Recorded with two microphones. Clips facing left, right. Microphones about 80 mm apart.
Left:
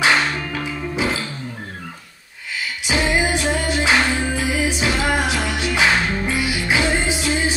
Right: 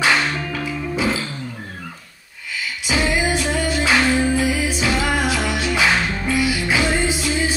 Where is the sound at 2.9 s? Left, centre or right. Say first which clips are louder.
Even; left.